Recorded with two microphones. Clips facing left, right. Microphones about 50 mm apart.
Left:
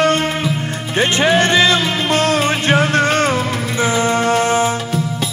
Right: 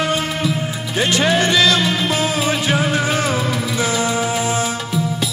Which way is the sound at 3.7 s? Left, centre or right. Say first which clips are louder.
Left 5 dB; left.